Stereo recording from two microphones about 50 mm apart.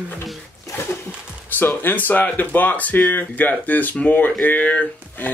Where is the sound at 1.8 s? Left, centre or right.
Left.